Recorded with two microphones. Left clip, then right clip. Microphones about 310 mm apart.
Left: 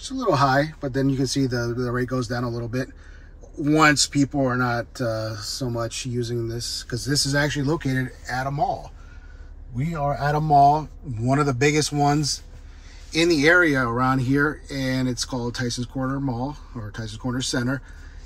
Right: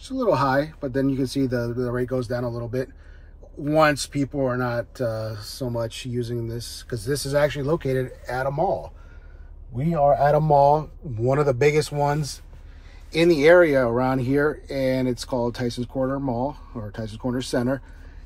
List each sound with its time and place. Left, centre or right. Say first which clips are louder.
0.0 s speech: even; centre
10.2 s speech: left 5 dB; centre